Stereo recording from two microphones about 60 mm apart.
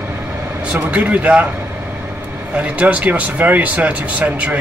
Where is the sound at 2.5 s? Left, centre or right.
Right.